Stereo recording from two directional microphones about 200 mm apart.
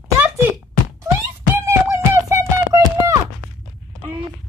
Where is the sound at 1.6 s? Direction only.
15° right (ahead or behind).